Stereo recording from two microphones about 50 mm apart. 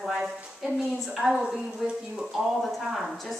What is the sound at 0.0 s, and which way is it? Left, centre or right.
A woman's voice, centre.